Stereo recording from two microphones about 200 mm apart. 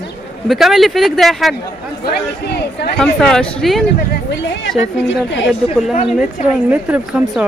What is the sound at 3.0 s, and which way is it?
Speech, 5° left (ahead or behind).